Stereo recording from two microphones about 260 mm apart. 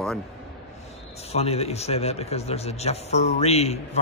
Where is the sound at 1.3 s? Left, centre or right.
Left.